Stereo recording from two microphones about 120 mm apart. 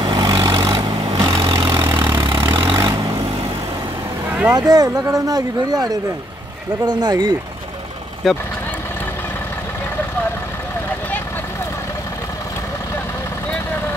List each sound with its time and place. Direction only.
0.0 s vehicle: 45° right (ahead or behind)
0.7 s vehicle: 45° right (ahead or behind)
1.0 s vehicle: 35° right (ahead or behind)
1.5 s vehicle: 45° right (ahead or behind)
4.3 s vehicle: 15° right (ahead or behind)
4.6 s speech: 30° right (ahead or behind)
8.2 s speech: centre (ahead or behind)